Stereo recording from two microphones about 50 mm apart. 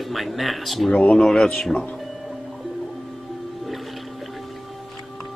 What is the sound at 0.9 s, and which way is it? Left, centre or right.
Speech, centre.